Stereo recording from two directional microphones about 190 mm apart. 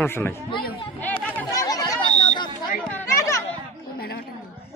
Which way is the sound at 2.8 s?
10° left (ahead or behind).